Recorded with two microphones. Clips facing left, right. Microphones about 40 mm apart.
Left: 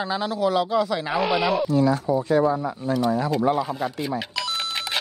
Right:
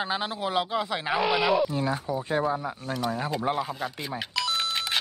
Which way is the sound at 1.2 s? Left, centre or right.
Centre.